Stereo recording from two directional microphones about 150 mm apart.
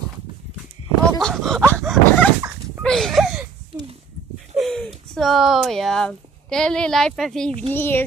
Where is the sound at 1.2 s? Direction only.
Centre (ahead or behind).